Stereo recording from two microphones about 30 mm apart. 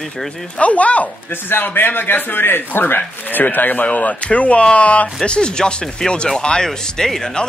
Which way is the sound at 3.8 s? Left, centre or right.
Left.